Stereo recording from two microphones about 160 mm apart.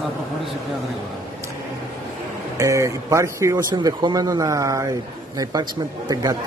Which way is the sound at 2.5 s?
20° right (ahead or behind).